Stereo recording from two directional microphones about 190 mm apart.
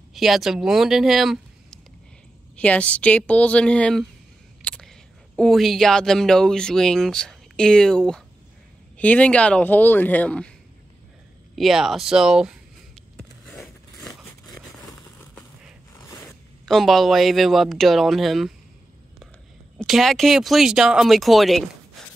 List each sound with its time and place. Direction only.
0.1 s speech: centre (ahead or behind)
11.5 s speech: centre (ahead or behind)
13.5 s a sound: centre (ahead or behind)
14.5 s crumpling: 20° left (ahead or behind)
15.9 s zipper: 15° left (ahead or behind)
16.6 s speech: centre (ahead or behind)
19.8 s speech: centre (ahead or behind)